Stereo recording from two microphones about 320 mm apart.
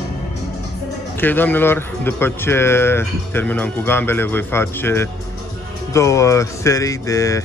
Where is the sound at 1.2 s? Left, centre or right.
Centre.